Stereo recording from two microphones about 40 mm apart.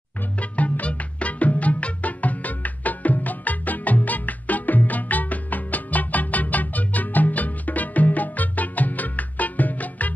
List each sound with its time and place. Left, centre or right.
0.4 s music: left